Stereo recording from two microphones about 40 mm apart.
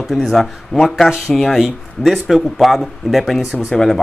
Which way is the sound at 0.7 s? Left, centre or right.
Centre.